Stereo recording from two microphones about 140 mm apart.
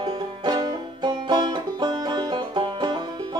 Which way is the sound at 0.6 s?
30° right (ahead or behind).